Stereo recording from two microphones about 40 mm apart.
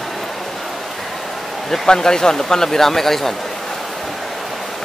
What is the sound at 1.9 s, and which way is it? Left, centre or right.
Speech, centre.